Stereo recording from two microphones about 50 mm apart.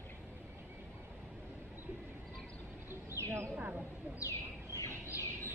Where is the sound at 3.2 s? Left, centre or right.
Right.